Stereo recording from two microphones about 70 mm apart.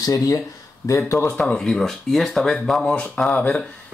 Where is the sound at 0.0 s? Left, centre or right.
Left.